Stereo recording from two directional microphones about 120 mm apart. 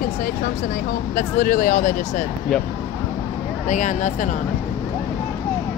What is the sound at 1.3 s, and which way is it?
Speech, 90° left.